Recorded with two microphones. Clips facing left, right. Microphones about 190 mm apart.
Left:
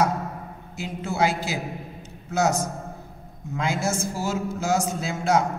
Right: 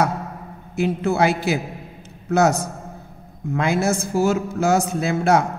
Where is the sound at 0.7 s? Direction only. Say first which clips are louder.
Right 7 dB; 60° right (ahead or behind).